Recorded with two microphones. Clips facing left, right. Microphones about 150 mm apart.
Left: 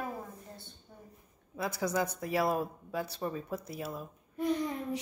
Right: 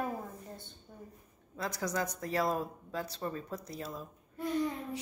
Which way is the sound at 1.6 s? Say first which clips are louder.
Left 3 dB; 10° left (ahead or behind).